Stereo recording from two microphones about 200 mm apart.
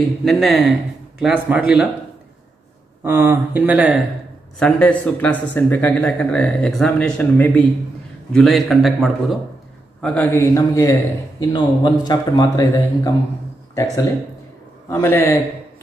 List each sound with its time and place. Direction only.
0.2 s a man's voice: centre (ahead or behind)
3.0 s speech: 10° right (ahead or behind)
4.6 s a man's voice: 5° left (ahead or behind)